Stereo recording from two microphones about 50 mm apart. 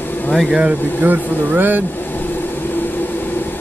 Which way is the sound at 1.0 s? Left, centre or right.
Right.